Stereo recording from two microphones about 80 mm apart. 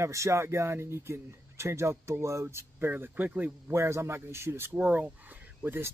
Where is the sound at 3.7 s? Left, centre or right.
Right.